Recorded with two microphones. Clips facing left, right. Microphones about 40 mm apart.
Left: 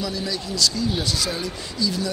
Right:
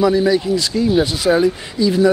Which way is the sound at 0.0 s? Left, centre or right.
Right.